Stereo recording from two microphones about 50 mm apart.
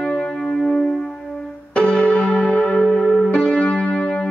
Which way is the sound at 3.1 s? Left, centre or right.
Centre.